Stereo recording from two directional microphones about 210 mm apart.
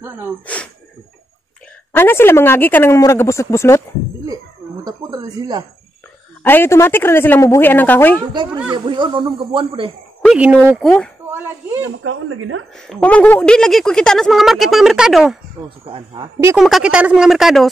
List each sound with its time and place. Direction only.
0.5 s speech: 5° left (ahead or behind)
1.9 s speech: 10° left (ahead or behind)
4.8 s speech: 20° right (ahead or behind)
6.4 s speech: 10° left (ahead or behind)
8.7 s speech: 20° right (ahead or behind)
10.2 s speech: 5° right (ahead or behind)
10.8 s a woman's voice: 5° left (ahead or behind)
12.0 s speech: 75° right (ahead or behind)
12.7 s a woman's voice: centre (ahead or behind)
15.8 s speech: 25° right (ahead or behind)
16.5 s a woman's voice: centre (ahead or behind)